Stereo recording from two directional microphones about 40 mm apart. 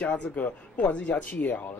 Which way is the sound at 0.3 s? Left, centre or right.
Left.